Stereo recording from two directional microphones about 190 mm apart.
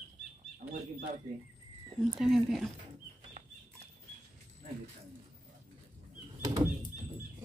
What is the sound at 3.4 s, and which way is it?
Bird flight, 35° right (ahead or behind).